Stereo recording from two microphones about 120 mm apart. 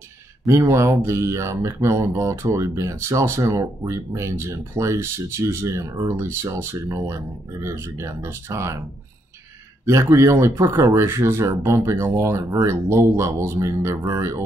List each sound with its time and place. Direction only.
0.5 s speech: 25° right (ahead or behind)
9.8 s speech: 25° right (ahead or behind)